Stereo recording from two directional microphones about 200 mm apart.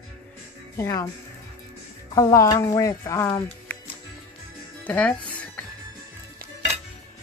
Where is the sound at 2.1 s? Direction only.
15° left (ahead or behind).